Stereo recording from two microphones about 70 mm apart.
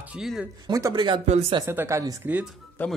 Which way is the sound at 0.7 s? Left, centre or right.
Right.